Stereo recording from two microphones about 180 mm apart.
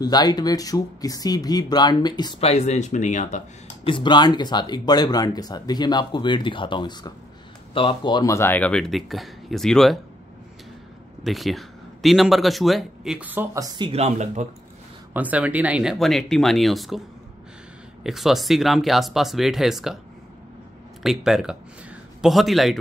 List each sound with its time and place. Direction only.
0.0 s speech: 20° left (ahead or behind)
2.4 s speech: 40° left (ahead or behind)
3.8 s speech: 25° left (ahead or behind); by 9.9 s centre (ahead or behind)
11.2 s a man's voice: centre (ahead or behind); by 14.5 s 40° right (ahead or behind)
15.1 s a man's voice: 10° right (ahead or behind)
18.0 s a man's voice: centre (ahead or behind)
21.0 s a man's voice: centre (ahead or behind)